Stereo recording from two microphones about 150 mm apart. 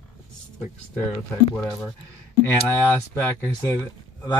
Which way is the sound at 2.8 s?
10° left (ahead or behind).